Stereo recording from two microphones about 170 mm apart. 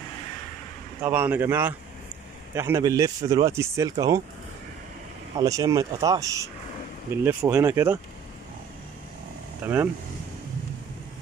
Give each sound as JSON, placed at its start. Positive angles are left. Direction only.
{"t": 1.0, "sound": "speech", "side_deg": -10}
{"t": 5.4, "sound": "speech", "side_deg": -20}
{"t": 9.6, "sound": "speech", "side_deg": -10}